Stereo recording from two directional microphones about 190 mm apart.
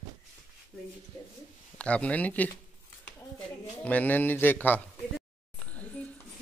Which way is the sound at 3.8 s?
10° left (ahead or behind).